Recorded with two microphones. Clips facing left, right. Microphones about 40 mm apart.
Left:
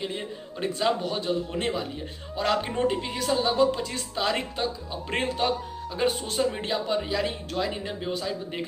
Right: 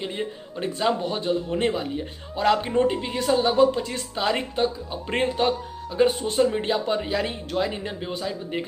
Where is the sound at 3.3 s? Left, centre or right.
Centre.